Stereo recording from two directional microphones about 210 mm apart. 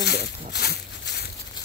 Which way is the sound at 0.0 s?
50° left (ahead or behind).